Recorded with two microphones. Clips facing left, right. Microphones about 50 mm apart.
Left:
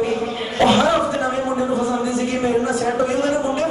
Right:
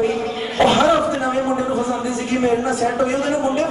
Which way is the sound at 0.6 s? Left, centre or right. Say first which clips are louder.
Right 1 dB; centre.